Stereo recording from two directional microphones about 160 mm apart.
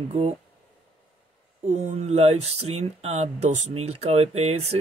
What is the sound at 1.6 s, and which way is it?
Speech, 45° right (ahead or behind).